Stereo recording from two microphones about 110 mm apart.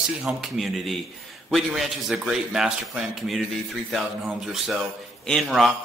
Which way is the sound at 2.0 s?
5° right (ahead or behind).